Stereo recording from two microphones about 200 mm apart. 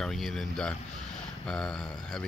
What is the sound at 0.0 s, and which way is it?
Speech, centre (ahead or behind).